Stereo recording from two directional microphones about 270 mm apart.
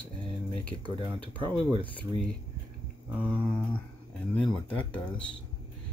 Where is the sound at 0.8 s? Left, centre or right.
Centre.